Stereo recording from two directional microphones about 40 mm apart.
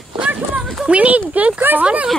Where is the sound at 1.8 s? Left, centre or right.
Right.